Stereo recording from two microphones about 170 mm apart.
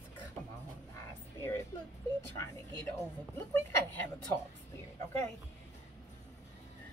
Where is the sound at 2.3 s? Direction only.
15° left (ahead or behind).